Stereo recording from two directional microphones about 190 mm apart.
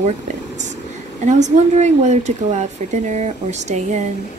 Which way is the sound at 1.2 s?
40° right (ahead or behind).